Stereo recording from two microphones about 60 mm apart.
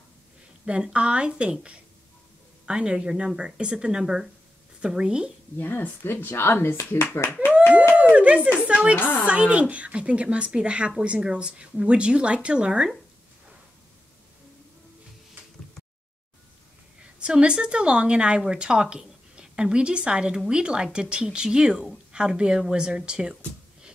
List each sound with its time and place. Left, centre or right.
0.7 s a woman's voice: centre
5.6 s speech: left
7.9 s a sound: right
8.6 s speech: centre
8.9 s speech: left
9.2 s a woman's voice: right
17.2 s a woman's voice: centre